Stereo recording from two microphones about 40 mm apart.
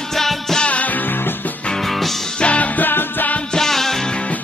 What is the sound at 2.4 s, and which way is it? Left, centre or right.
Music, left.